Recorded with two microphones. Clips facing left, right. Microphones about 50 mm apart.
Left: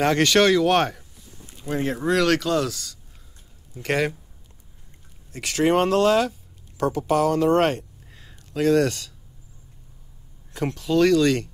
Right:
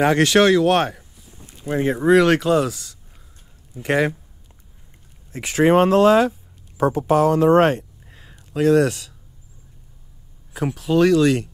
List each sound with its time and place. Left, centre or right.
0.0 s speech: centre
1.6 s speech: centre
5.3 s speech: centre
10.5 s speech: centre